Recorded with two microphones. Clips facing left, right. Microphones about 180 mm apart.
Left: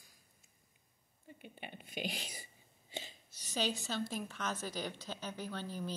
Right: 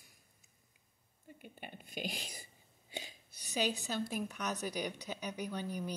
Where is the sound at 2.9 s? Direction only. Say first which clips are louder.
Even; 10° right (ahead or behind).